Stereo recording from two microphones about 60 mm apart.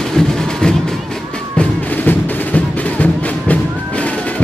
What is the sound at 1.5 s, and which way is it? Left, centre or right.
Music, left.